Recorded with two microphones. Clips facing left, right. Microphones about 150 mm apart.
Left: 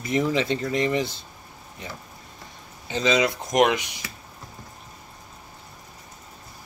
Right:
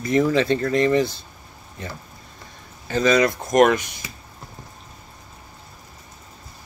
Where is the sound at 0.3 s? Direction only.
15° left (ahead or behind).